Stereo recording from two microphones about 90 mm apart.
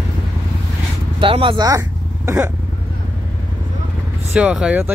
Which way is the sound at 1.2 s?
75° right (ahead or behind).